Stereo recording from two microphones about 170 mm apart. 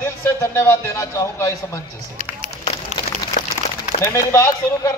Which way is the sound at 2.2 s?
45° right (ahead or behind).